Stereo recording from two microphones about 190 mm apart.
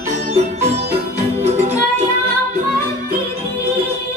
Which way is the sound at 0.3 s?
35° right (ahead or behind).